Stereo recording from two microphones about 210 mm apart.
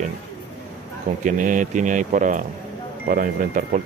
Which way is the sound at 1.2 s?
40° right (ahead or behind).